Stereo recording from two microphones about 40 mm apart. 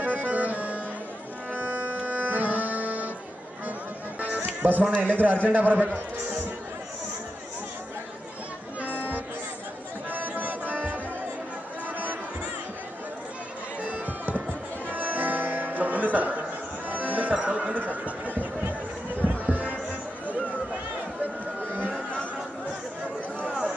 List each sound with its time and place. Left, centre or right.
0.0 s music: right
2.0 s music: right
4.4 s music: right
5.0 s a man's voice: right
10.1 s music: right
13.8 s music: right
17.7 s a sound: right